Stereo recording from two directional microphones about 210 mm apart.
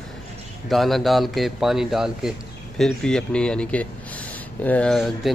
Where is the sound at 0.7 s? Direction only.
Centre (ahead or behind).